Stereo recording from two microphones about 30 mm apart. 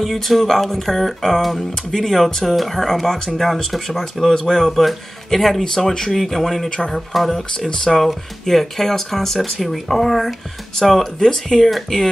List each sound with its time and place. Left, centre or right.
0.1 s speech: centre
11.1 s speech: centre